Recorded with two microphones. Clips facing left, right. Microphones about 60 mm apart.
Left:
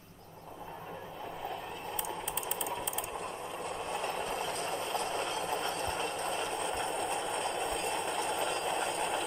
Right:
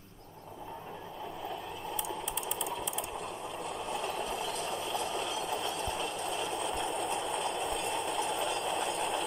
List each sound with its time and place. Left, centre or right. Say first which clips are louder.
2.6 s a sound: right 1 dB; centre
3.8 s vehicle: even; left
6.5 s train: even; centre